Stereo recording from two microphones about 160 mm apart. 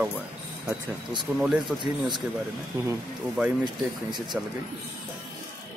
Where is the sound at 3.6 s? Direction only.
25° right (ahead or behind).